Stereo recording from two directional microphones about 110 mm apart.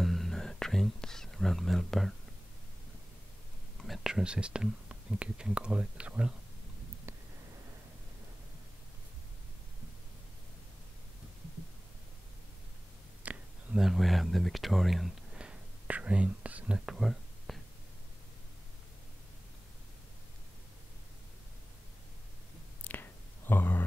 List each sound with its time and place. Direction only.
0.0 s whispering: centre (ahead or behind)
3.8 s speech: centre (ahead or behind)
13.2 s a sound: 15° right (ahead or behind)
13.7 s speech: centre (ahead or behind)
22.8 s whispering: 15° left (ahead or behind)